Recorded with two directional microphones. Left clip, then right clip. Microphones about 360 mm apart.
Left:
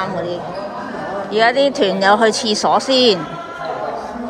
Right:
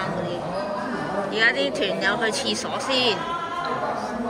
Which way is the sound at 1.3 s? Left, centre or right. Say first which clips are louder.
Left 8 dB; centre.